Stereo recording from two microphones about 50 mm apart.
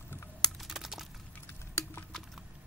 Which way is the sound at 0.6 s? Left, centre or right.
Centre.